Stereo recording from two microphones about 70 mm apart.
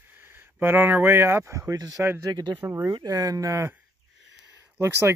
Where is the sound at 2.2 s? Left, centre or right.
Right.